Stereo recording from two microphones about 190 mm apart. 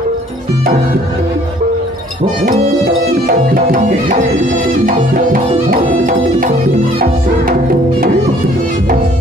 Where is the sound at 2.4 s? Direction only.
40° right (ahead or behind).